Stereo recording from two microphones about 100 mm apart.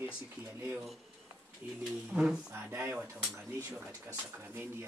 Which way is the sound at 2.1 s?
5° right (ahead or behind).